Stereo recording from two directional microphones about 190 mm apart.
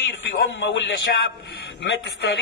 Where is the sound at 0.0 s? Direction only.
75° left (ahead or behind).